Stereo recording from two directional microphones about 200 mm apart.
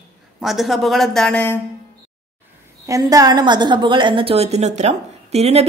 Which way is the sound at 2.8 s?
15° right (ahead or behind).